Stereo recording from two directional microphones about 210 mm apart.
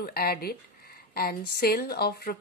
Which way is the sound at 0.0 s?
45° left (ahead or behind).